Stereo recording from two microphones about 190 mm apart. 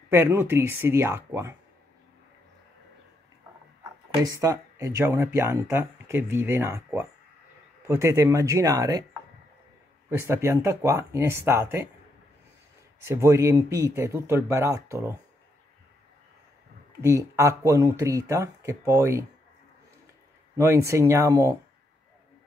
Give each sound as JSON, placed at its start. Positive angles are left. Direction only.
{"t": 0.1, "sound": "speech", "side_deg": -15}
{"t": 4.2, "sound": "speech", "side_deg": -15}
{"t": 10.0, "sound": "speech", "side_deg": -15}
{"t": 13.0, "sound": "speech", "side_deg": -15}
{"t": 17.0, "sound": "speech", "side_deg": -15}
{"t": 20.5, "sound": "speech", "side_deg": -15}